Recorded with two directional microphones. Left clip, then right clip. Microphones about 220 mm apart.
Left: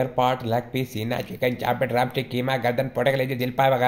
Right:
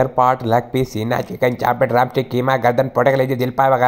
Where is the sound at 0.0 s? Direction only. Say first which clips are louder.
Right 7 dB; 25° right (ahead or behind).